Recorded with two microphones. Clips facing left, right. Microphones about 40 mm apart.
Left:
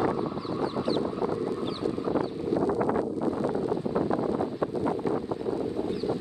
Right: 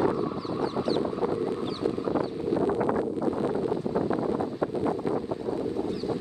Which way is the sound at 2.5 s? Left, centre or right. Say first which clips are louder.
Even; right.